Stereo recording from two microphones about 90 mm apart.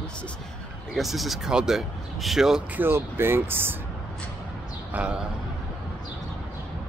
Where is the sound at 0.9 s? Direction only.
Centre (ahead or behind).